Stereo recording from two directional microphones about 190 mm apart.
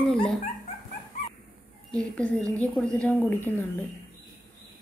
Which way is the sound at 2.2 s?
5° left (ahead or behind).